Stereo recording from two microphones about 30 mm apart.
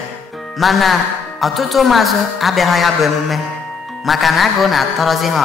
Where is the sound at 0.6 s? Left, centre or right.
Centre.